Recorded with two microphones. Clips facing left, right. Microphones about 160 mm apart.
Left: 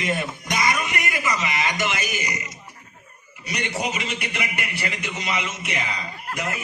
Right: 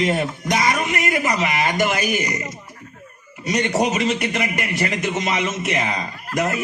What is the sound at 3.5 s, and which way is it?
A man's voice, 45° right (ahead or behind).